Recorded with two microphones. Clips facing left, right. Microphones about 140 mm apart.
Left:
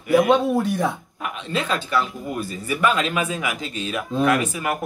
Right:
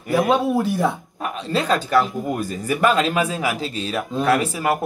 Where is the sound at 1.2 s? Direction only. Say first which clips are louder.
Right 3 dB; 35° right (ahead or behind).